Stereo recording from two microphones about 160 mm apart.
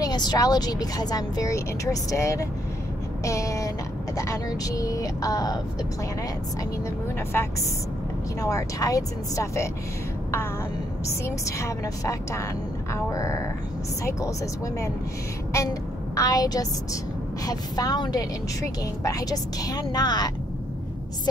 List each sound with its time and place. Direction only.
0.0 s a woman's voice: 25° left (ahead or behind)
3.3 s a sound: 20° left (ahead or behind)
4.2 s a woman's voice: 20° left (ahead or behind)
8.4 s a woman's voice: 20° left (ahead or behind)
11.2 s a woman's voice: 20° left (ahead or behind)
16.2 s a woman's voice: 25° left (ahead or behind)